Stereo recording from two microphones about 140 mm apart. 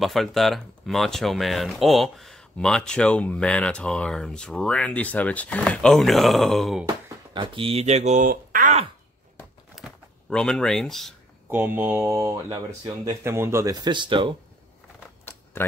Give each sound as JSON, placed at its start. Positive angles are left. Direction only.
{"t": 0.0, "sound": "speech", "side_deg": 0}
{"t": 7.3, "sound": "speech", "side_deg": -40}
{"t": 9.8, "sound": "a sound", "side_deg": 0}
{"t": 11.4, "sound": "speech", "side_deg": -15}
{"t": 15.5, "sound": "speech", "side_deg": 15}